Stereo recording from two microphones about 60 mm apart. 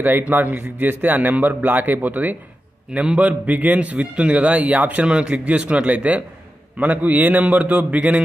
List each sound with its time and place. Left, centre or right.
0.0 s a man's voice: right